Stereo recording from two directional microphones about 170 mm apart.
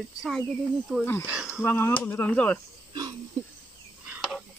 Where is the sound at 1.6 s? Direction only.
15° left (ahead or behind).